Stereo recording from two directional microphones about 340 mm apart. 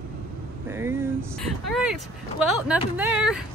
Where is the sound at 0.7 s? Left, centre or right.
Centre.